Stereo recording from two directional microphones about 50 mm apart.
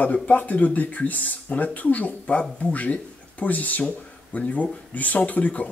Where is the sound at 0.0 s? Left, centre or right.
Left.